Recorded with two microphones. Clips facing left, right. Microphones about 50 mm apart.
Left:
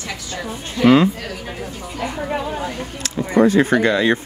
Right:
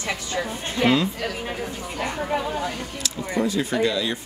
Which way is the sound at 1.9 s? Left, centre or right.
Centre.